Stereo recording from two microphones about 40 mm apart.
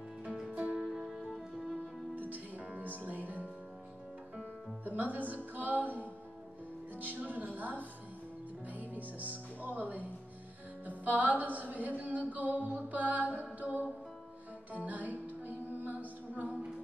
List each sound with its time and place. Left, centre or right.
0.5 s music: right
0.8 s music: centre
2.1 s music: right
4.8 s music: right
7.0 s music: right
14.9 s music: right